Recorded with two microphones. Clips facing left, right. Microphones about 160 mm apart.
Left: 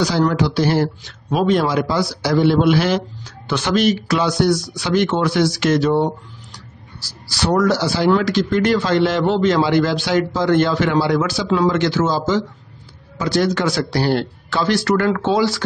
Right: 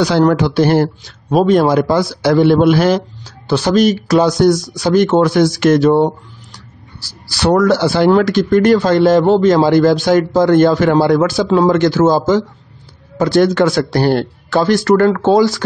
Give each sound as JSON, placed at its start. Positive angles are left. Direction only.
{"t": 0.0, "sound": "a man's voice", "side_deg": -55}
{"t": 1.0, "sound": "a man's voice", "side_deg": -40}
{"t": 6.5, "sound": "a sound", "side_deg": -65}
{"t": 8.1, "sound": "a man's voice", "side_deg": -50}